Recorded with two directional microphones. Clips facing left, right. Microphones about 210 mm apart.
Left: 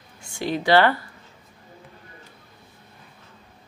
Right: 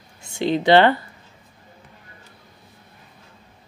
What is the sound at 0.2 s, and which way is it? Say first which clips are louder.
Speech: right 5 dB; 20° right (ahead or behind).